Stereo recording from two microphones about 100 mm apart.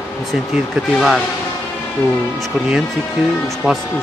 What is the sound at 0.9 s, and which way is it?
Speech, centre (ahead or behind).